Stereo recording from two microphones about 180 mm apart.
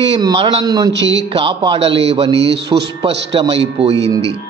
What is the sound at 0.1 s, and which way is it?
A man's voice, 25° right (ahead or behind).